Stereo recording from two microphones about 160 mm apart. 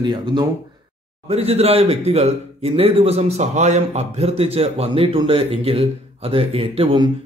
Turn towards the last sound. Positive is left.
turn(degrees=-35)  # may be behind; listen again after turning